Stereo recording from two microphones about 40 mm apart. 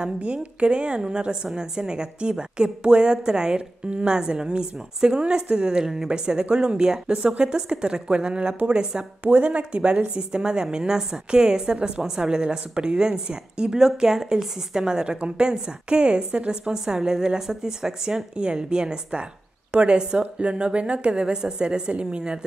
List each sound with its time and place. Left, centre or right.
0.0 s a woman's voice: right
9.2 s a woman's voice: right
16.7 s a woman's voice: centre